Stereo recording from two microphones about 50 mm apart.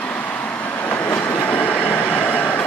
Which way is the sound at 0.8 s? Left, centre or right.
Left.